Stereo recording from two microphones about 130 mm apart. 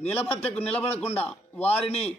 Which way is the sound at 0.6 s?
10° left (ahead or behind).